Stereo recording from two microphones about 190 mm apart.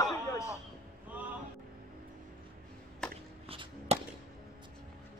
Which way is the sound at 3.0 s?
5° left (ahead or behind).